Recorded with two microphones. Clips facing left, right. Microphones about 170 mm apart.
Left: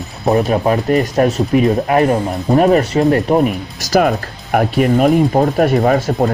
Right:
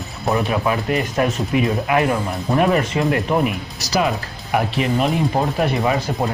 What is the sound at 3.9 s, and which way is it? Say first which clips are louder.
Speech: left 6 dB; 50° left (ahead or behind).